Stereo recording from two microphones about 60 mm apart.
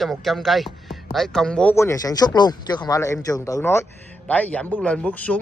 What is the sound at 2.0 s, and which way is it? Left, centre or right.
Speech, left.